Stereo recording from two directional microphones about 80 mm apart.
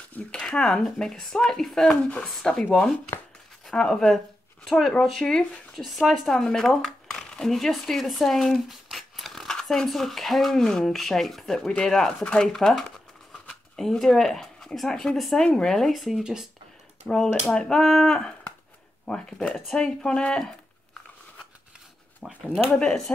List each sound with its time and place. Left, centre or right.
0.1 s a sound: centre
0.6 s speech: centre
17.1 s speech: centre
22.2 s speech: centre
22.8 s speech: centre